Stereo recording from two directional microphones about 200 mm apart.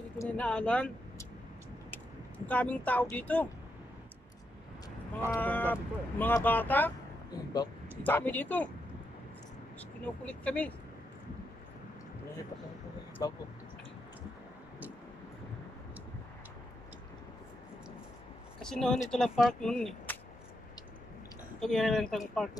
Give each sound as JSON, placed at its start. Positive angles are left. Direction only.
{"t": 0.2, "sound": "speech", "side_deg": 5}
{"t": 5.3, "sound": "speech", "side_deg": 10}
{"t": 8.0, "sound": "speech", "side_deg": 10}
{"t": 9.8, "sound": "speech", "side_deg": 5}
{"t": 13.2, "sound": "speech", "side_deg": 15}
{"t": 18.6, "sound": "speech", "side_deg": 5}
{"t": 21.5, "sound": "speech", "side_deg": 0}